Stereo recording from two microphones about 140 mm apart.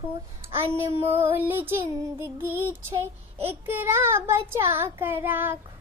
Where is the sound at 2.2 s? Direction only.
15° right (ahead or behind).